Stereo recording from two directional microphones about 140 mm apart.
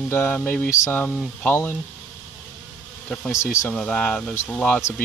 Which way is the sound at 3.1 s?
20° left (ahead or behind).